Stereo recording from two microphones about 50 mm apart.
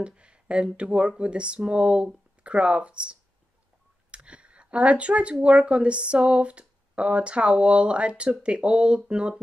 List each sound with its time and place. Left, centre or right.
0.0 s speech: right